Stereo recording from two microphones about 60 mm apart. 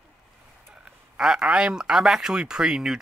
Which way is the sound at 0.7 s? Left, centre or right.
Centre.